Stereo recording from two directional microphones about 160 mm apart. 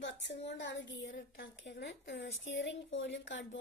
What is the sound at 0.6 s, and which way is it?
A woman's voice, 90° left.